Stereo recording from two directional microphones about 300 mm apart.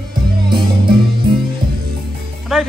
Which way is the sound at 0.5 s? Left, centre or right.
Centre.